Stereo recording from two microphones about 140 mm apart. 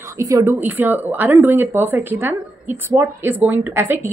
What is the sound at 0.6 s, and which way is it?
A woman's voice, 10° right (ahead or behind).